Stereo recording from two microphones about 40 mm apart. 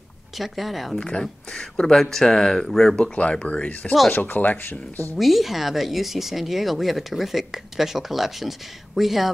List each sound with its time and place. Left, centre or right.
0.4 s speech: centre
0.9 s speech: left
2.0 s speech: centre
3.2 s speech: left
4.1 s speech: left
5.1 s speech: centre